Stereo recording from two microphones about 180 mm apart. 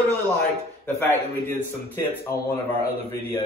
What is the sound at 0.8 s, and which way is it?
A man's voice, 10° left (ahead or behind).